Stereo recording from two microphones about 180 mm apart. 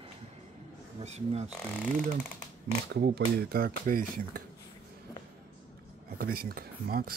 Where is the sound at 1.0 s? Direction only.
35° right (ahead or behind).